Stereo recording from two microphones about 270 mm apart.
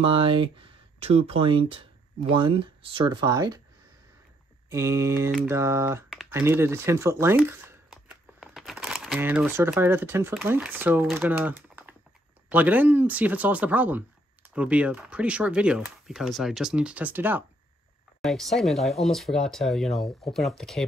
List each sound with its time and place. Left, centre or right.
0.0 s speech: centre
4.6 s speech: centre